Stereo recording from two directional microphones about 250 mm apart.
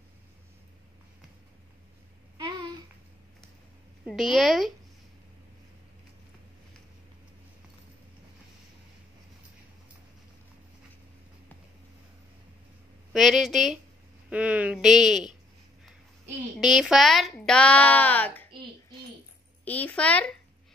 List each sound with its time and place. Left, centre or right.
2.3 s babbling: centre
4.0 s speech: centre
13.1 s speech: centre
16.5 s speech: centre
19.6 s speech: centre